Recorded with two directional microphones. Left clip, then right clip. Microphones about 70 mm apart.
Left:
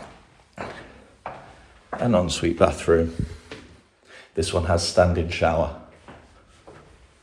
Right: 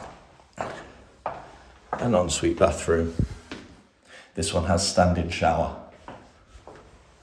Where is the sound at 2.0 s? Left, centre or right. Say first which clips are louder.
Left 1 dB; right.